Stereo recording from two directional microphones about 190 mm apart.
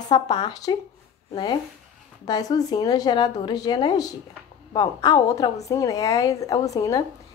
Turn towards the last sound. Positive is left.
turn(degrees=15)  # may be behind; listen again after turning